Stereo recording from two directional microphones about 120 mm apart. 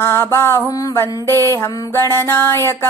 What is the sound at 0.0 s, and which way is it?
Music, 20° left (ahead or behind).